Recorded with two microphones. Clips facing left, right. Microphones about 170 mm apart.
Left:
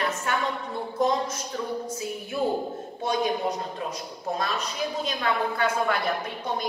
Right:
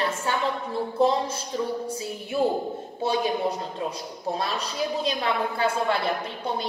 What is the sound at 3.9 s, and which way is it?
A woman's voice, 30° right (ahead or behind).